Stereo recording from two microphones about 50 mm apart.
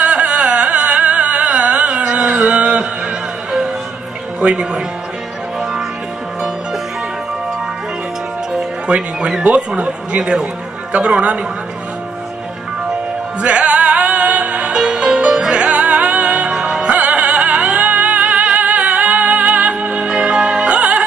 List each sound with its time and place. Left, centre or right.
0.0 s music: right
4.4 s speech: centre
5.6 s music: centre
8.8 s speech: right
13.4 s music: right
15.5 s music: right